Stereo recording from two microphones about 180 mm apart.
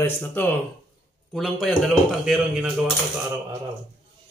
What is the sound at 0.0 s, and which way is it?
A man's voice, 10° left (ahead or behind).